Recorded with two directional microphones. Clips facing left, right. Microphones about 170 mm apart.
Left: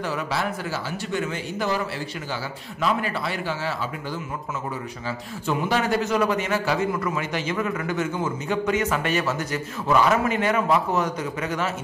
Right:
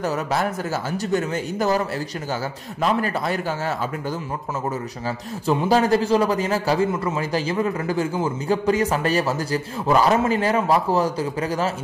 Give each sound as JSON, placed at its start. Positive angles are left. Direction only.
{"t": 0.0, "sound": "a man's voice", "side_deg": -45}
{"t": 2.8, "sound": "a man's voice", "side_deg": -45}
{"t": 5.5, "sound": "a man's voice", "side_deg": -35}